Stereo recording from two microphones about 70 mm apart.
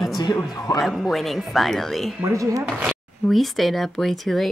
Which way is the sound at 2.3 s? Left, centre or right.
Right.